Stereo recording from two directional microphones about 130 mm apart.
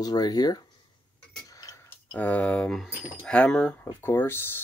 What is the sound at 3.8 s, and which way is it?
Speech, 15° left (ahead or behind).